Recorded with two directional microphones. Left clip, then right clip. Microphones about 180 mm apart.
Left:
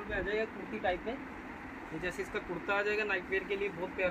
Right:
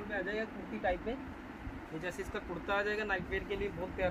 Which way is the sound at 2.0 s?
15° right (ahead or behind).